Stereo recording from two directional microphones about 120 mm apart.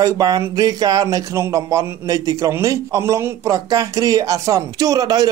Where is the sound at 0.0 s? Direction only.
30° right (ahead or behind).